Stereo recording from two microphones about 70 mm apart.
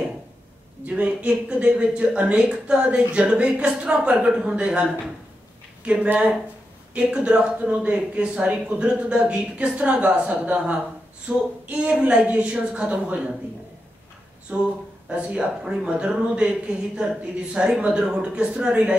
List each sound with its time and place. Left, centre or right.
0.8 s speech: centre
6.9 s speech: centre
15.0 s speech: centre